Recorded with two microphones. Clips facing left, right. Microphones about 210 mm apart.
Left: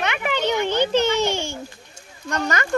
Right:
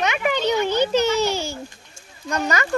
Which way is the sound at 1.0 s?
35° right (ahead or behind).